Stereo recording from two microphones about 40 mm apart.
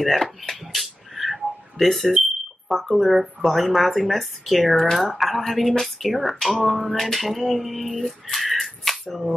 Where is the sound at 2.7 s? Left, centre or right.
Centre.